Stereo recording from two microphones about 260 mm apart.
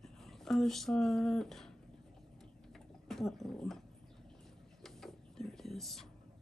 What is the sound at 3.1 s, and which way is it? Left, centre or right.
Speech, centre.